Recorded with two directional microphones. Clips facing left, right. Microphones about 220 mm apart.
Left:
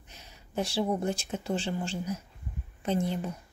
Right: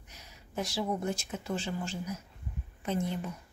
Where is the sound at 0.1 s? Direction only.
30° left (ahead or behind).